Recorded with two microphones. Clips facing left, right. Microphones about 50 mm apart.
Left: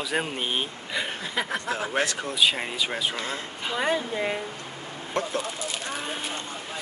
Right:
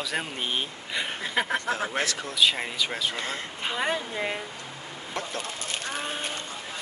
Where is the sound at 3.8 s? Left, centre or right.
Centre.